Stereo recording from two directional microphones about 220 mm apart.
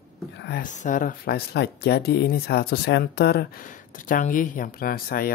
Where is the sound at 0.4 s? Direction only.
50° left (ahead or behind).